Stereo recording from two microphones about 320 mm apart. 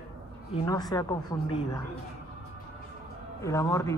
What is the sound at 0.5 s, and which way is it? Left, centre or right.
Speech, centre.